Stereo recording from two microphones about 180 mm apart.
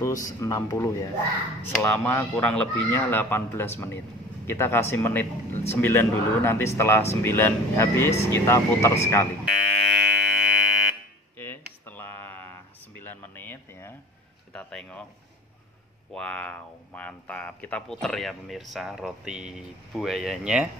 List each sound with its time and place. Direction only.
0.0 s speech: 20° left (ahead or behind)
9.5 s fire alarm: centre (ahead or behind)
11.3 s a sound: 10° left (ahead or behind)
16.1 s speech: 5° left (ahead or behind)